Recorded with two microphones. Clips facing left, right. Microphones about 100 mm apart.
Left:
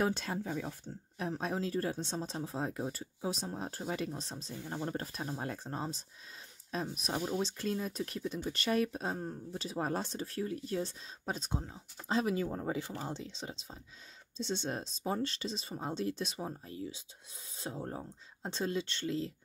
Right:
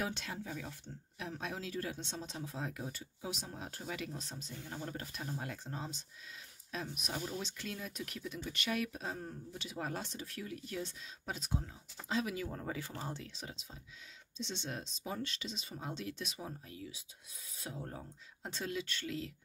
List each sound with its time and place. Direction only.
0.0 s speech: 40° left (ahead or behind)